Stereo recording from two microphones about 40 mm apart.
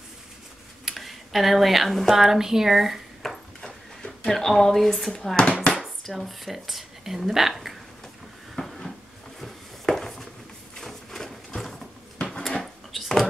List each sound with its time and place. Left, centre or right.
0.8 s speech: centre
2.1 s speech: centre
3.2 s a sound: centre
3.6 s a sound: centre
4.3 s speech: centre
5.4 s speech: left
6.1 s speech: centre
8.5 s a sound: centre
12.4 s dishes: centre